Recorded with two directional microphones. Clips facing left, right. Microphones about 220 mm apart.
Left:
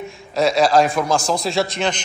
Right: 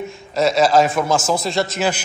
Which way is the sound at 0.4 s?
Centre (ahead or behind).